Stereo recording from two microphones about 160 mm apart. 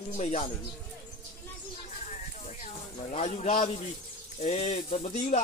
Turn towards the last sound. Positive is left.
turn(degrees=45)  # may be behind; listen again after turning